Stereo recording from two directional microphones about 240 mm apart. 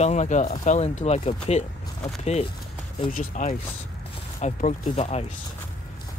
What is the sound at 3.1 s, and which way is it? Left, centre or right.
Speech, left.